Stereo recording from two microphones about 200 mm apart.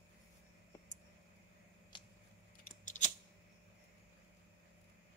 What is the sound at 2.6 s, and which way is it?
Scissors, 40° left (ahead or behind).